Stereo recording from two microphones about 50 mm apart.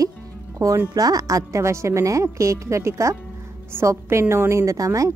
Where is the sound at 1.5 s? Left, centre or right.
Right.